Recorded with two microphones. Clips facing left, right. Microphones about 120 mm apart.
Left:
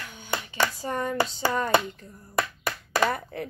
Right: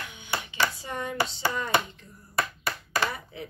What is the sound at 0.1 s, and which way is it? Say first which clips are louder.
Hands: left 4 dB; 45° left (ahead or behind).